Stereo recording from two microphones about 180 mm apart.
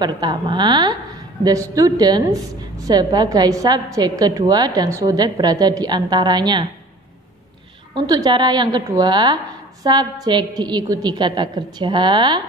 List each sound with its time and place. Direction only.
0.0 s a woman's voice: 25° right (ahead or behind)
7.9 s a woman's voice: 25° right (ahead or behind)